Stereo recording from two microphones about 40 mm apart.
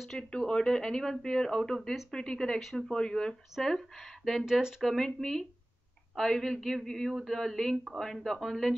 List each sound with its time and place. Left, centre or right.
0.2 s speech: left
4.5 s speech: centre
4.8 s speech: centre
7.7 s speech: right
8.0 s speech: centre